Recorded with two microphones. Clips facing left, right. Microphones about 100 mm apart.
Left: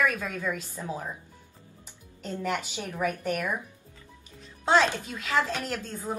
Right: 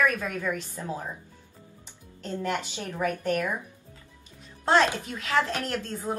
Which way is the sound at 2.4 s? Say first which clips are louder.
Even; 10° left (ahead or behind).